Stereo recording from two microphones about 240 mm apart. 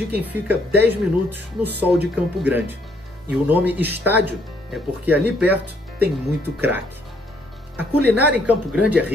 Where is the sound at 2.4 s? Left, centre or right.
Centre.